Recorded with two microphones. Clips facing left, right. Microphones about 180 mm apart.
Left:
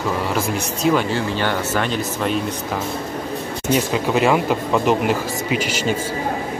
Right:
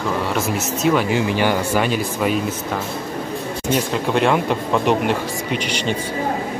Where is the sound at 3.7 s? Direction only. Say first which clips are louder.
Left 1 dB; 5° left (ahead or behind).